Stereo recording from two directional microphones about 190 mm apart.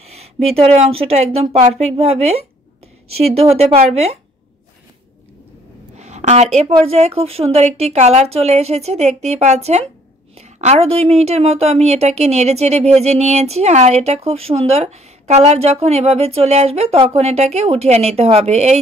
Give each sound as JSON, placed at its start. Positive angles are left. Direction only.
{"t": 0.0, "sound": "a woman's voice", "side_deg": -35}
{"t": 3.4, "sound": "a woman's voice", "side_deg": -35}
{"t": 5.9, "sound": "a woman's voice", "side_deg": -35}